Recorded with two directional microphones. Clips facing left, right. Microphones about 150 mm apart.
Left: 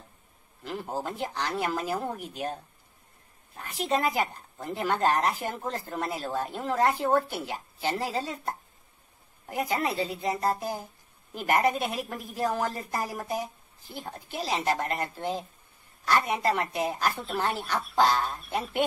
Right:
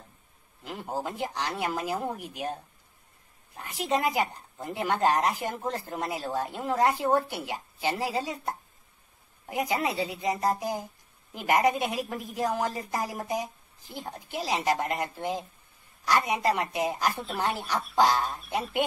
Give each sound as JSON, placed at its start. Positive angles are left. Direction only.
{"t": 0.7, "sound": "speech", "side_deg": -15}